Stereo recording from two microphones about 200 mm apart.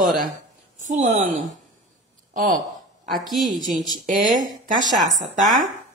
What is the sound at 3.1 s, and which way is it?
Speech, centre (ahead or behind).